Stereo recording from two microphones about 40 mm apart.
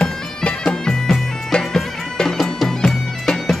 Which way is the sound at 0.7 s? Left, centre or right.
Centre.